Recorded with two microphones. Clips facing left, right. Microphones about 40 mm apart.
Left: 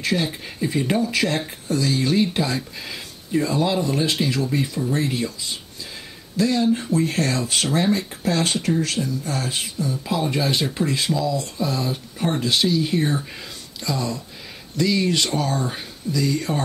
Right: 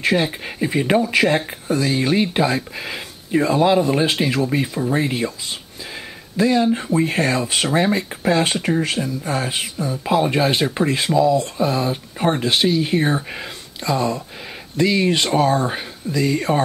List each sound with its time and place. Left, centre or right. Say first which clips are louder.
0.0 s speech: right 5 dB; right
1.0 s speech: right 5 dB; centre
6.3 s speech: right 3 dB; right